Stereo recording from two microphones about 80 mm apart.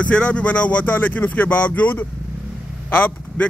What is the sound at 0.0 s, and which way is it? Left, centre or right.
Speech, centre.